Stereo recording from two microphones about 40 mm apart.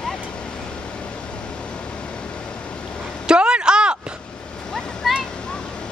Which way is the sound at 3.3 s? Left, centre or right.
Right.